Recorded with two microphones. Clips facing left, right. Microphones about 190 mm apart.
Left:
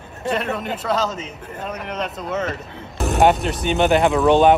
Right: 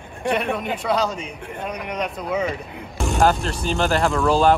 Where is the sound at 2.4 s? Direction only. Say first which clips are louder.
Right 1 dB; centre (ahead or behind).